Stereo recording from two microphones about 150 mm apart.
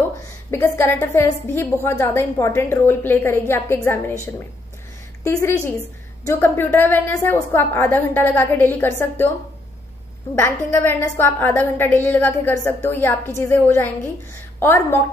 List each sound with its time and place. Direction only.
0.5 s a woman's voice: 15° left (ahead or behind)
5.2 s a woman's voice: 20° left (ahead or behind)
10.4 s a woman's voice: 15° left (ahead or behind)